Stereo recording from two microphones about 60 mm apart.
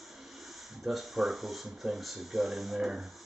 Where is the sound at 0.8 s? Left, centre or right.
Centre.